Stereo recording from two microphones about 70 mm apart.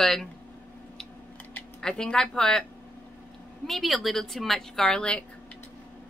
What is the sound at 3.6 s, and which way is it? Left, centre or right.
A woman's voice, centre.